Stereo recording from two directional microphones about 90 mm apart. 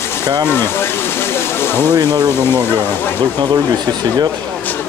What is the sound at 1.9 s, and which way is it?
Speech, 50° right (ahead or behind).